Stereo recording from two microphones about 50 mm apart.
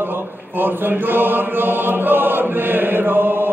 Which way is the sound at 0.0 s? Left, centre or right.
Right.